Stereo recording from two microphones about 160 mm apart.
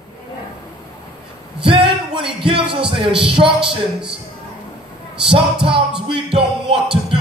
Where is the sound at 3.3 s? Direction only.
35° right (ahead or behind).